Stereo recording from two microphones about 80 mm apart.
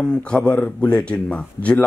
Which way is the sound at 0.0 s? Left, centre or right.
Centre.